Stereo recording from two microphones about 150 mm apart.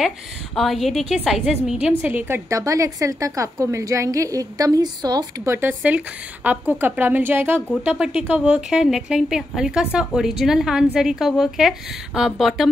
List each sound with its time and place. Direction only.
0.6 s a woman's voice: centre (ahead or behind)